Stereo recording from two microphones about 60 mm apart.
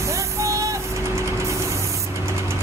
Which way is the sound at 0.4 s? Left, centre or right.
Right.